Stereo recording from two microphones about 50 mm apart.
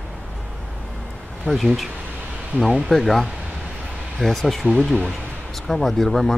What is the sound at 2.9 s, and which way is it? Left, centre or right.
Speech, centre.